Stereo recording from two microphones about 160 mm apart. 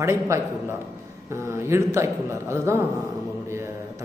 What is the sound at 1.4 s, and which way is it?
A man's voice, 15° right (ahead or behind).